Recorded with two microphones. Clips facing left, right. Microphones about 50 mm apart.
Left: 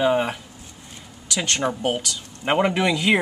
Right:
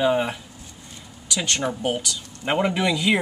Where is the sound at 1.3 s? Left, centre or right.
Left.